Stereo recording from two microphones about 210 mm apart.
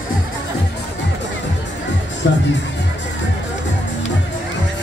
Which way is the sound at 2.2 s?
60° left (ahead or behind).